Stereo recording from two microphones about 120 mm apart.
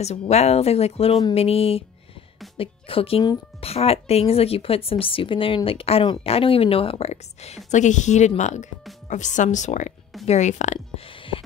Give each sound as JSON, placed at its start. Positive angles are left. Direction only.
{"t": 0.0, "sound": "a woman's voice", "side_deg": 65}
{"t": 10.2, "sound": "speech", "side_deg": 70}
{"t": 11.1, "sound": "music", "side_deg": 50}